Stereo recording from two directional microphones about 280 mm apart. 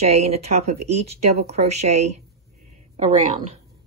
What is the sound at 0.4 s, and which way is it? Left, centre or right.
Speech, right.